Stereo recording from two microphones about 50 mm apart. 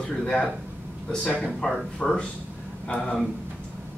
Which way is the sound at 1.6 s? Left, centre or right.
Centre.